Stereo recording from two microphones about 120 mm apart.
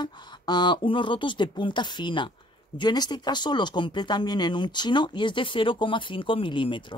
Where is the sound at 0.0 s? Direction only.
40° left (ahead or behind).